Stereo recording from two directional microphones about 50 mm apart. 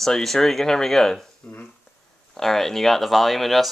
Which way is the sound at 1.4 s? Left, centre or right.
Left.